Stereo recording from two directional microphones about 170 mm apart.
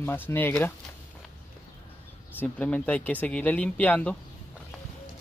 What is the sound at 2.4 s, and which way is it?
Speech, 10° left (ahead or behind).